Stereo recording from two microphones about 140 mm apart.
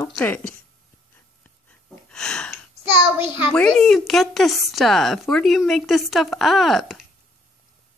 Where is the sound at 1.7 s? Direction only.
5° left (ahead or behind).